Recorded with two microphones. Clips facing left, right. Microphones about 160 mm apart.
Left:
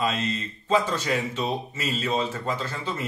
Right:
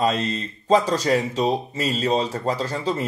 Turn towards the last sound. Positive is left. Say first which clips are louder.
# right 6 dB
turn(degrees=-40)  # may be behind; listen again after turning